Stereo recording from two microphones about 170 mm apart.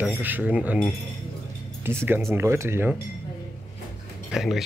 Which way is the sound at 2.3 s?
15° right (ahead or behind).